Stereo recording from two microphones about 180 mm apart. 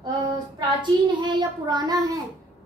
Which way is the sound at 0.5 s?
25° right (ahead or behind).